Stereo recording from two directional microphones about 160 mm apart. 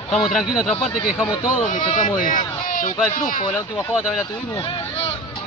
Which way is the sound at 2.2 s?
55° left (ahead or behind).